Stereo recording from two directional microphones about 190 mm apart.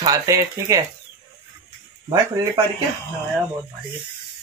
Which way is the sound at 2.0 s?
20° right (ahead or behind).